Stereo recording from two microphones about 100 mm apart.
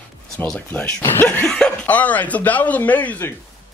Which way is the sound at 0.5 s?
15° left (ahead or behind).